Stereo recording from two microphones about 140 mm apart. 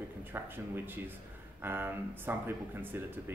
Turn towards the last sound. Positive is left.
turn(degrees=-15)  # may be behind; listen again after turning